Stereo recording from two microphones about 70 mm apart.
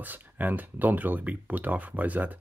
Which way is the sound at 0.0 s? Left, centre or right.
Right.